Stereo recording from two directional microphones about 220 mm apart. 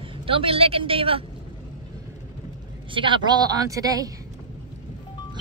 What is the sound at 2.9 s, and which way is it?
Speech, 20° right (ahead or behind).